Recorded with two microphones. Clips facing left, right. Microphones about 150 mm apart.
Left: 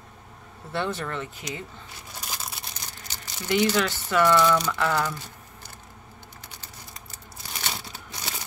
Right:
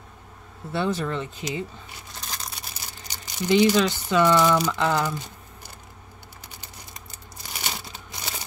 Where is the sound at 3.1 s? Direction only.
15° right (ahead or behind).